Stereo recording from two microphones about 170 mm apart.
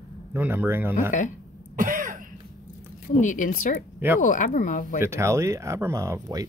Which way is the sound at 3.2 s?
50° left (ahead or behind).